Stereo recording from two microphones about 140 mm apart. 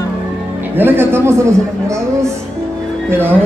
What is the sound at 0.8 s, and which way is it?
Speech, 15° right (ahead or behind).